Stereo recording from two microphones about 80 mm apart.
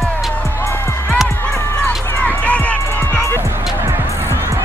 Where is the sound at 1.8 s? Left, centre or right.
Centre.